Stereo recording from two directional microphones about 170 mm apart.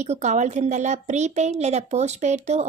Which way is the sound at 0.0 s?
45° right (ahead or behind).